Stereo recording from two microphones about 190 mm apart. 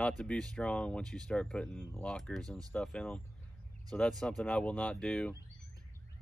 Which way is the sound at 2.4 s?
20° right (ahead or behind).